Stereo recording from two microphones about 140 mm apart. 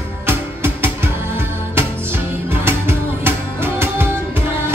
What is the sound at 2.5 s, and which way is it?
Music, 15° right (ahead or behind).